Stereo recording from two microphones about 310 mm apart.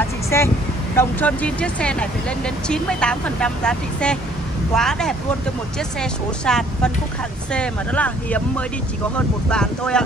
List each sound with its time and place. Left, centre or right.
0.3 s speech: centre